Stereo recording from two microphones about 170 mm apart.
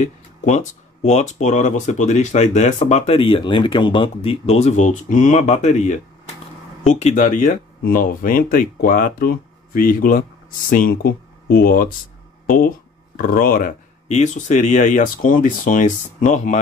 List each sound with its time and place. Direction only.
0.0 s speech: 45° left (ahead or behind)
14.0 s speech: 45° left (ahead or behind)